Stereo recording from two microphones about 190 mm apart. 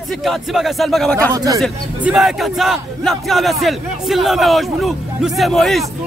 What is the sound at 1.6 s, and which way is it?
Speech, centre (ahead or behind).